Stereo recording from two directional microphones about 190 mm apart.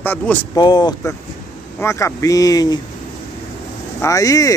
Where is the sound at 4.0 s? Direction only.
20° left (ahead or behind).